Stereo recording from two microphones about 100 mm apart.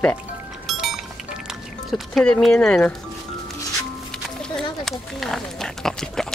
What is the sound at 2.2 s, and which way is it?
Speech, 10° left (ahead or behind).